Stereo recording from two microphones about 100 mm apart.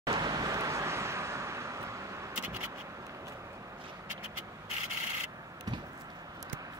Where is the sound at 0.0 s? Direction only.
45° right (ahead or behind); by 1.8 s 30° right (ahead or behind).